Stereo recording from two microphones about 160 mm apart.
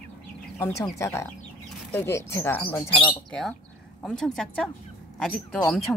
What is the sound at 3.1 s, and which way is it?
Speech, centre (ahead or behind).